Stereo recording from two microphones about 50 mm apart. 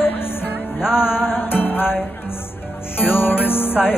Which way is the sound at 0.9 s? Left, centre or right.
Left.